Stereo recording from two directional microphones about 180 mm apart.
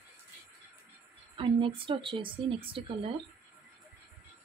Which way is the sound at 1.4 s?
30° right (ahead or behind).